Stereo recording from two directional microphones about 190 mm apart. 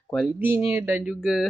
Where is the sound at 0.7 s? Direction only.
10° right (ahead or behind).